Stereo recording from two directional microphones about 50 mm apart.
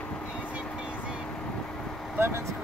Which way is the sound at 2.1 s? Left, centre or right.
Right.